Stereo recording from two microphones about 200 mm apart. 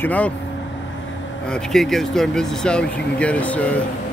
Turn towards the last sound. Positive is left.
turn(degrees=5)  # may be behind; listen again after turning